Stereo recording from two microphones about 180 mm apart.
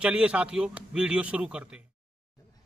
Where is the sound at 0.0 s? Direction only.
5° right (ahead or behind).